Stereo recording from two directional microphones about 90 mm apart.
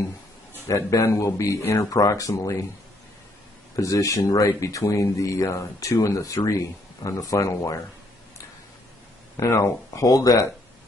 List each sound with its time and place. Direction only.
0.7 s speech: 35° left (ahead or behind)
3.7 s speech: 35° left (ahead or behind)
9.4 s speech: 40° left (ahead or behind)